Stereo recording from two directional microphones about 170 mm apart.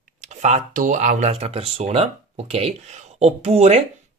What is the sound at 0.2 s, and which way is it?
Speech, 45° right (ahead or behind).